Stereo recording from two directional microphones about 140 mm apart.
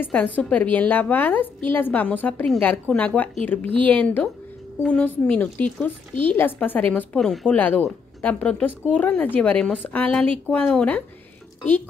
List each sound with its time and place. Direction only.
0.0 s a woman's voice: 10° left (ahead or behind)